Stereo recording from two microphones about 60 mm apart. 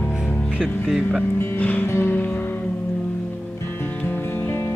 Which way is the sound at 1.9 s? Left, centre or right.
Left.